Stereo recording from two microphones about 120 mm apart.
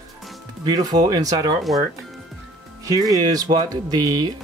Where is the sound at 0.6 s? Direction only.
35° right (ahead or behind).